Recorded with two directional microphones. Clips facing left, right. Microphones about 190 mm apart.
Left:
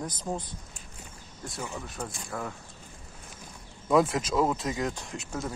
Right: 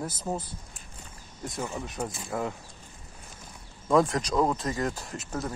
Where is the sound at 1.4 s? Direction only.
20° right (ahead or behind).